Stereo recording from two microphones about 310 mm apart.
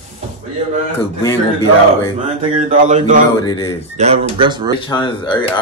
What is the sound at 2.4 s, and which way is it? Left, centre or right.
Speech, right.